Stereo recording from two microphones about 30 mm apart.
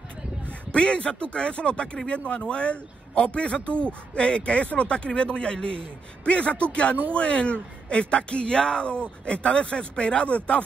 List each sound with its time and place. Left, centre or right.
0.7 s speech: left
2.0 s a man's voice: left
2.5 s speech: left
6.2 s a man's voice: left